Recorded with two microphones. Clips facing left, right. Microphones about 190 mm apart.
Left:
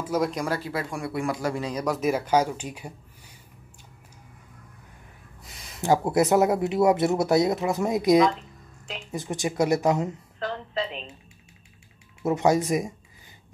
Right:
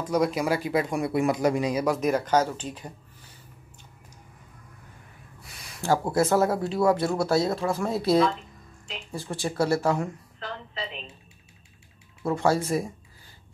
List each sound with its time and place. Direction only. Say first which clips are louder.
0.0 s speech: right 2 dB; centre (ahead or behind)
1.9 s speech: left 3 dB; 5° left (ahead or behind)
5.8 s speech: left 2 dB; 20° left (ahead or behind)
12.2 s speech: left 2 dB; 20° left (ahead or behind)